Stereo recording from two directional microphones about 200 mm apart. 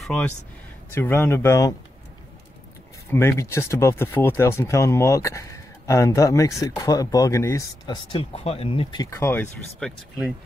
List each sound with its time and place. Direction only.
0.0 s a man's voice: 5° left (ahead or behind)
3.1 s speech: 10° left (ahead or behind)